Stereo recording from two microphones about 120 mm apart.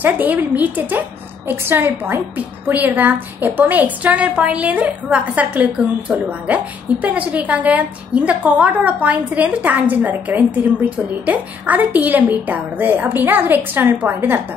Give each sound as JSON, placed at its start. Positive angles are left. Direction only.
{"t": 0.0, "sound": "a woman's voice", "side_deg": -15}